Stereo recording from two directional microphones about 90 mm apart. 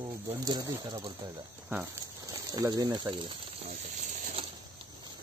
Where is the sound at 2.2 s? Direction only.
40° right (ahead or behind); by 3.3 s 60° right (ahead or behind).